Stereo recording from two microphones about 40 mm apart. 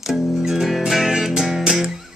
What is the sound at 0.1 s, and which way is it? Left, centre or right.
Music, centre.